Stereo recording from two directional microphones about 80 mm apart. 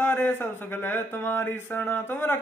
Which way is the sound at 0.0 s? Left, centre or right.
Left.